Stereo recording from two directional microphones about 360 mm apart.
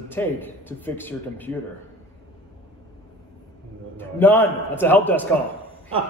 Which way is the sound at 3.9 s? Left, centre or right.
Centre.